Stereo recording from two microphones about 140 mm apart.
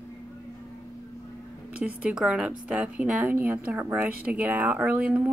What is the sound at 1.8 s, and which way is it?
A woman's voice, 10° right (ahead or behind).